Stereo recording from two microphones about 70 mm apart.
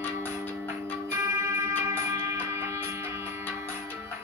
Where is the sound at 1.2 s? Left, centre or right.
Right.